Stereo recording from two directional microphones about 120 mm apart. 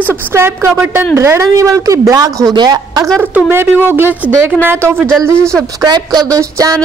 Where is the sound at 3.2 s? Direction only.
15° right (ahead or behind).